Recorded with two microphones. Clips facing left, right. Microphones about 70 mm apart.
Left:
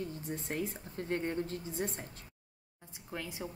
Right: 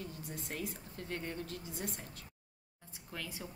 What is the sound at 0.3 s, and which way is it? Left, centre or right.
A woman's voice, left.